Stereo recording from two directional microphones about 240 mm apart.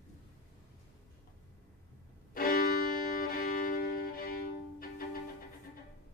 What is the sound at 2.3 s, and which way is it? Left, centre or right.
Violin, left.